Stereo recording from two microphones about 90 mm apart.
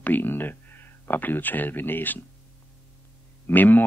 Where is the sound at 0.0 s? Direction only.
20° left (ahead or behind).